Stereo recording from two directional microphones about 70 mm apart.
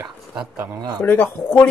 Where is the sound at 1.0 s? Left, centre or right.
Left.